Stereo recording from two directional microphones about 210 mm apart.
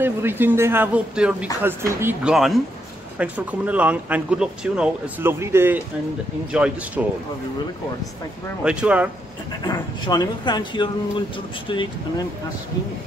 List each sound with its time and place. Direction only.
0.0 s speech: 10° right (ahead or behind)
8.6 s speech: 5° right (ahead or behind)
9.7 s speech: 20° left (ahead or behind)